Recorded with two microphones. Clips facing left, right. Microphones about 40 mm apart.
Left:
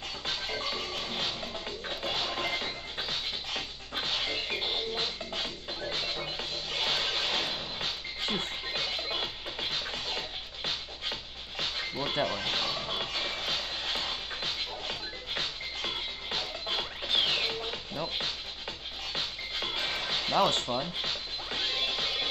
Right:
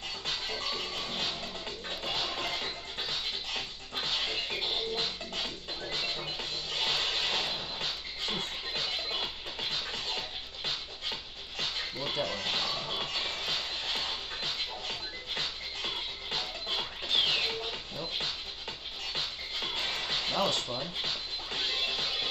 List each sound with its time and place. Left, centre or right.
0.3 s music: centre
8.2 s music: left
8.8 s music: centre
20.4 s speech: left
20.8 s music: centre